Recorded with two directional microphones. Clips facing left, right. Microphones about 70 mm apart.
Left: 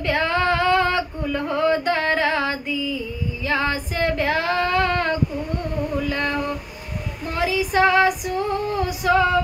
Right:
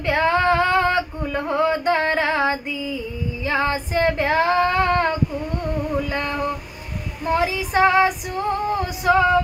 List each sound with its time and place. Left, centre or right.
0.0 s female singing: right